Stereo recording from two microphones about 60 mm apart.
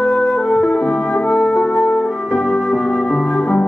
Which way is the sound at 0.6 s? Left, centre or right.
Centre.